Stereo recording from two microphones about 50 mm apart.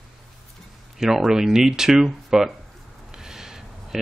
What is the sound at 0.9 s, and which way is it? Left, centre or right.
Speech, centre.